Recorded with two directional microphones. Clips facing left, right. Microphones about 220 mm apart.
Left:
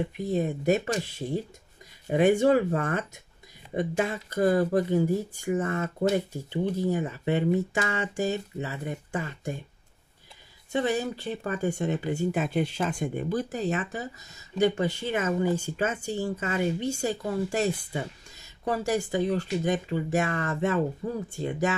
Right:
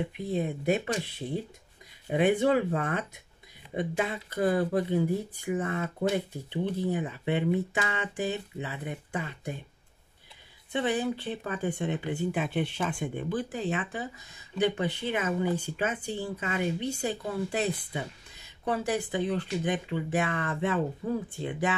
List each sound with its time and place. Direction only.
0.2 s speech: 45° left (ahead or behind)
10.7 s speech: 40° left (ahead or behind)